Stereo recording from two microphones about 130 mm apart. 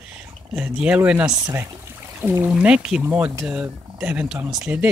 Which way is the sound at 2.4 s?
10° right (ahead or behind).